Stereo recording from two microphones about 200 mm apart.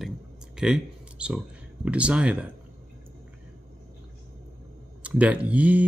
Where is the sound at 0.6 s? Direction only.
5° right (ahead or behind).